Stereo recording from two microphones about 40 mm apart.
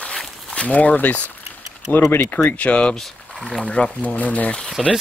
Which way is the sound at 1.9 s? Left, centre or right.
Left.